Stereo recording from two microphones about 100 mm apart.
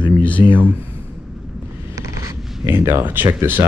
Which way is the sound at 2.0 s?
30° right (ahead or behind).